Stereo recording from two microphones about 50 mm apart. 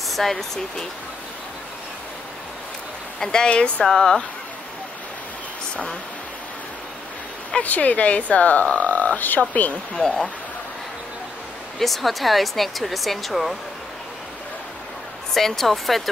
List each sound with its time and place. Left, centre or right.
0.1 s speech: centre
3.2 s speech: centre
3.8 s speech: centre
7.6 s speech: left
9.9 s speech: centre
11.8 s speech: centre
15.3 s speech: centre